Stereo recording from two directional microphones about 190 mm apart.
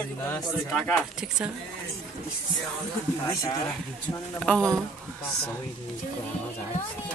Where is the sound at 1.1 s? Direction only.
5° right (ahead or behind).